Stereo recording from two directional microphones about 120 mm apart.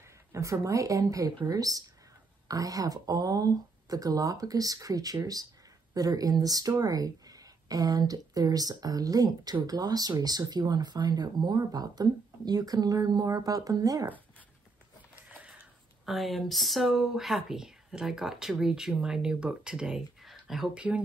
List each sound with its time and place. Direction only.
0.3 s speech: 25° right (ahead or behind)
16.1 s speech: centre (ahead or behind)